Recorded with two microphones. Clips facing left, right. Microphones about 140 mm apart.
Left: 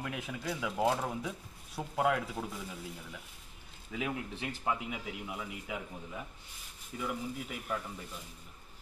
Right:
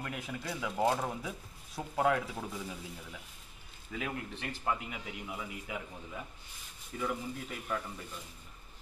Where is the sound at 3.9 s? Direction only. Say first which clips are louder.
Left 2 dB; 10° left (ahead or behind).